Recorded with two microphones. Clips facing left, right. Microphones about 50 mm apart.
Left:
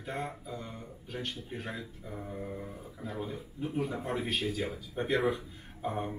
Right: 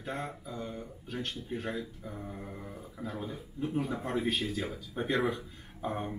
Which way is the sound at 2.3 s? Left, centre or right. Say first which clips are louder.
Left 3 dB; centre.